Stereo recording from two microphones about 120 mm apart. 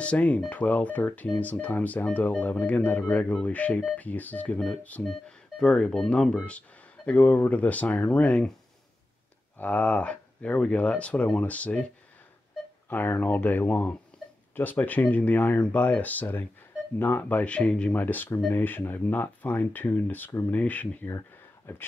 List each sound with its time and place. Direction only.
0.0 s speech: 10° left (ahead or behind)
9.6 s speech: 10° left (ahead or behind)
12.9 s speech: 15° left (ahead or behind)